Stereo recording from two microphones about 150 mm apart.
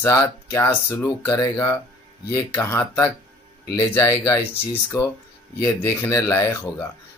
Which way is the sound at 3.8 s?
25° left (ahead or behind).